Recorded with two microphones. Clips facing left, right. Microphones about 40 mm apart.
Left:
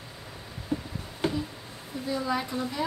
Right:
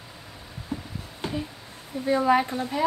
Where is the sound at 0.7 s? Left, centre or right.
Centre.